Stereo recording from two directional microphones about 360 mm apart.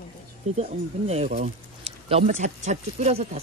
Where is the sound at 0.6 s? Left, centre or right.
Centre.